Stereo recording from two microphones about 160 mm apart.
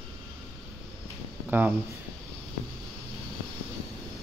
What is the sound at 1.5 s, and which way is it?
Speech, 10° right (ahead or behind).